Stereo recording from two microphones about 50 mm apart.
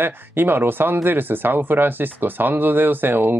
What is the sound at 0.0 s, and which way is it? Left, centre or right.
Speech, right.